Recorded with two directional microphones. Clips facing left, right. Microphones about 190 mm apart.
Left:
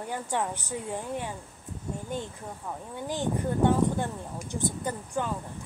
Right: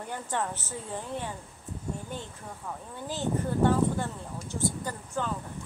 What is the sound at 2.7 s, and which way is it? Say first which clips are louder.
A woman's voice: left 3 dB; 15° left (ahead or behind).